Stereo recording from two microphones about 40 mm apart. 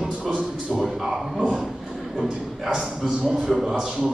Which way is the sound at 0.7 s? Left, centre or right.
Centre.